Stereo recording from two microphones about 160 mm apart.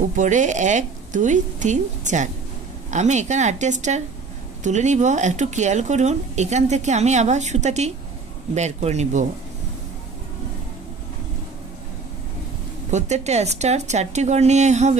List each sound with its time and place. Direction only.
0.1 s speech: 50° right (ahead or behind)
12.9 s speech: 45° right (ahead or behind)